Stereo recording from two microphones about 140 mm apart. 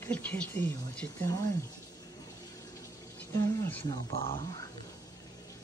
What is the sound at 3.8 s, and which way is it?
Speech, 30° left (ahead or behind).